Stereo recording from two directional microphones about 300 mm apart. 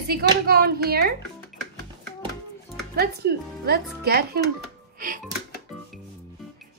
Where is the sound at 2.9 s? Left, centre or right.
Right.